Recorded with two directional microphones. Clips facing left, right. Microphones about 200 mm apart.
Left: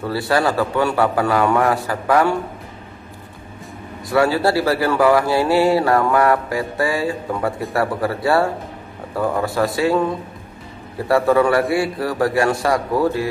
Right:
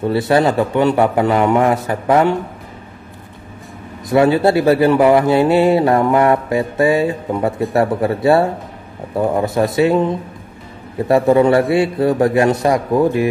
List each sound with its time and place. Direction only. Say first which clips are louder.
0.0 s speech: right 5 dB; 20° right (ahead or behind)
4.1 s speech: right 4 dB; 20° right (ahead or behind)